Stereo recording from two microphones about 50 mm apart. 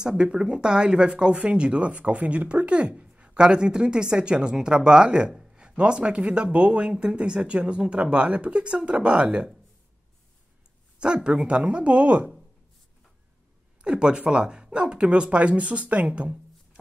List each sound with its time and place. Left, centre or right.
0.0 s speech: centre
11.0 s speech: centre
13.8 s speech: centre